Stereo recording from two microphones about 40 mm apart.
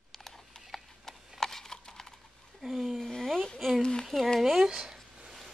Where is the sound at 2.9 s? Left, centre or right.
Centre.